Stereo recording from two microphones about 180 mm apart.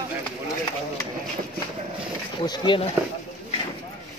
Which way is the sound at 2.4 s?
25° left (ahead or behind).